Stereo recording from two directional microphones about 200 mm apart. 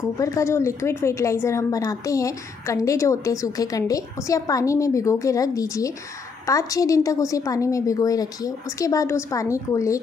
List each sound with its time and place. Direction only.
0.2 s a woman's voice: 15° left (ahead or behind)